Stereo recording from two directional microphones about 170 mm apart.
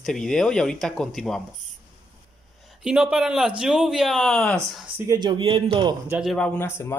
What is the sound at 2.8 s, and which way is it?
Speech, 5° right (ahead or behind).